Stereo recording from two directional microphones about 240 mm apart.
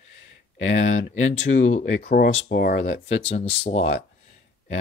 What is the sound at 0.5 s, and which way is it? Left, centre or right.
Speech, left.